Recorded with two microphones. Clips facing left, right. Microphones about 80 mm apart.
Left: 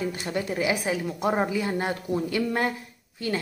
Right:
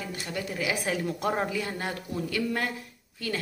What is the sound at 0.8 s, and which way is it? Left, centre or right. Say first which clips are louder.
Speech: left 2 dB; centre.